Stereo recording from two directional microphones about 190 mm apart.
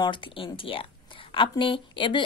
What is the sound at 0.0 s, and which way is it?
A woman's voice, 25° left (ahead or behind).